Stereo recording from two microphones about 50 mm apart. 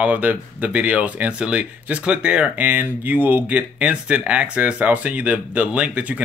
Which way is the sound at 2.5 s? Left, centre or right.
Right.